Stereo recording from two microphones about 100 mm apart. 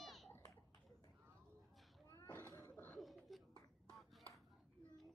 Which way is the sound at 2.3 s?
25° left (ahead or behind).